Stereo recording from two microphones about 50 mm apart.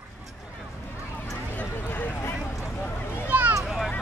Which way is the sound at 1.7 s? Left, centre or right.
Left.